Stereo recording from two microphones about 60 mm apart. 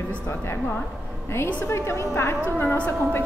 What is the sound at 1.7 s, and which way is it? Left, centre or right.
Speech, left.